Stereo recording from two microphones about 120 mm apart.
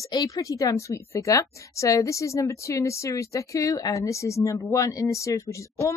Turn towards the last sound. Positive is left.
turn(degrees=25)  # may be behind; listen again after turning